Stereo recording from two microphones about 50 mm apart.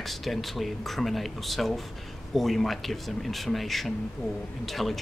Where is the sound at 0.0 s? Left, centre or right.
Centre.